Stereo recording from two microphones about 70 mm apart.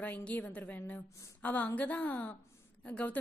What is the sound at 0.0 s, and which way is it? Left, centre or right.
A woman's voice, left.